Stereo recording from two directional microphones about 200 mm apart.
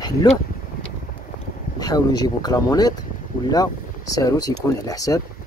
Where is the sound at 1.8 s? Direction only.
20° left (ahead or behind).